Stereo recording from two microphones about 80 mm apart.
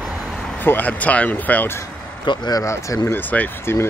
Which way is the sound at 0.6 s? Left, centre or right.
Left.